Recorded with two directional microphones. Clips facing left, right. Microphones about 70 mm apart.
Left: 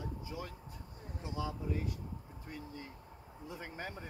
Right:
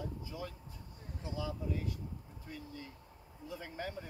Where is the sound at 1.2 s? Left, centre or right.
Left.